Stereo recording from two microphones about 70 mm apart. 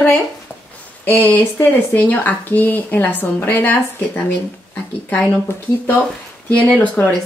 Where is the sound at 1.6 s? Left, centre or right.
Left.